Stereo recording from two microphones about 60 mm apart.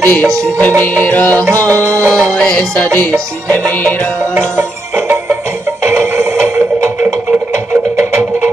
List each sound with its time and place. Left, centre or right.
0.0 s music: left
1.5 s music: right
2.2 s music: centre
2.7 s music: left
4.6 s music: right